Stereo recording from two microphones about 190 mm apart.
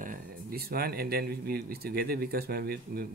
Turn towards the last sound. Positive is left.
turn(degrees=-55)  # may be behind; listen again after turning